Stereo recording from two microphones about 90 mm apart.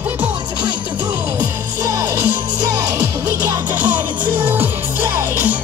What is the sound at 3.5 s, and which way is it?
Music, 20° right (ahead or behind).